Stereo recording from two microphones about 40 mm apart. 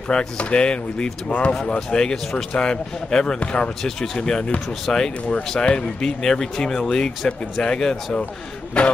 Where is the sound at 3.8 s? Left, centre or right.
Centre.